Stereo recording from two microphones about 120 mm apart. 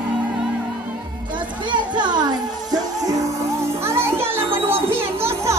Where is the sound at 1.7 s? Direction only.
40° right (ahead or behind).